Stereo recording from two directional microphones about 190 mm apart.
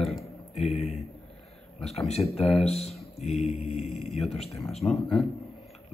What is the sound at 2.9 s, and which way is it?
Speech, centre (ahead or behind).